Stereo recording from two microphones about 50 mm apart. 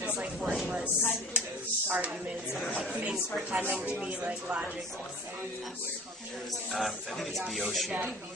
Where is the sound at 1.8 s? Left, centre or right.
Right.